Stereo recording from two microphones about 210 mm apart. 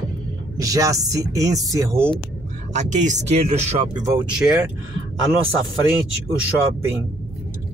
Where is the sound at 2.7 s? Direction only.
35° right (ahead or behind).